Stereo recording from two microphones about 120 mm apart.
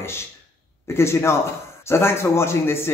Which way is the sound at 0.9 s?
20° left (ahead or behind).